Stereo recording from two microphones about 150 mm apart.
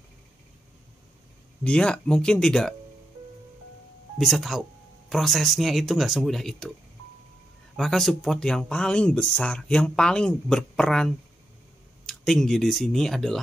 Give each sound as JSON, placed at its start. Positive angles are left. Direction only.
{"t": 1.6, "sound": "speech", "side_deg": 5}
{"t": 4.2, "sound": "speech", "side_deg": 0}
{"t": 7.7, "sound": "speech", "side_deg": 0}